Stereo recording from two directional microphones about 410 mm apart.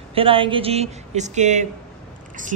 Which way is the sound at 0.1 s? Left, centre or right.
Centre.